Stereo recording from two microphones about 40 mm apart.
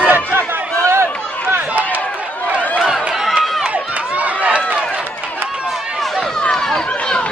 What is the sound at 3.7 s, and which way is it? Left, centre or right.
Run, right.